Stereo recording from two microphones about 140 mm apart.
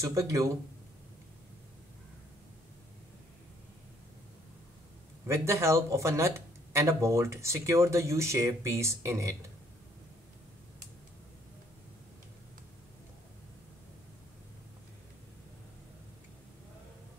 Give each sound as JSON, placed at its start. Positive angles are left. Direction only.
{"t": 0.0, "sound": "speech", "side_deg": -20}
{"t": 5.2, "sound": "speech", "side_deg": -20}